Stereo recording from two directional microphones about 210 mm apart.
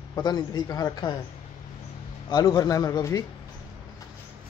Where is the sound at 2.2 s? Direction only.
15° left (ahead or behind).